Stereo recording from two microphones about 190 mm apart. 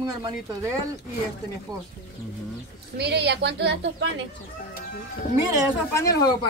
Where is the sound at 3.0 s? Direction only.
60° right (ahead or behind).